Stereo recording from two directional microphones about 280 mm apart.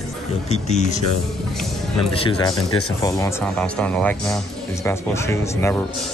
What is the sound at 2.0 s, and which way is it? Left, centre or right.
Speech, centre.